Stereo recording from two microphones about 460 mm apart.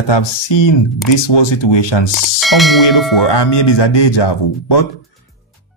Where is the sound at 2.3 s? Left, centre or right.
Centre.